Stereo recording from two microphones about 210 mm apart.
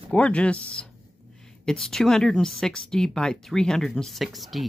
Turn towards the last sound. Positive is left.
turn(degrees=0)  # may be behind; listen again after turning